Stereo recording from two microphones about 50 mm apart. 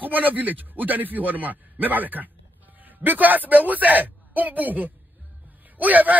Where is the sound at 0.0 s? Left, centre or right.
Right.